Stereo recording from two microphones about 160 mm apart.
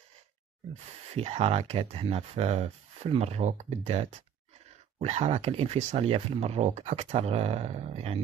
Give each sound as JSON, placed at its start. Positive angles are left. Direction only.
{"t": 1.1, "sound": "speech", "side_deg": -40}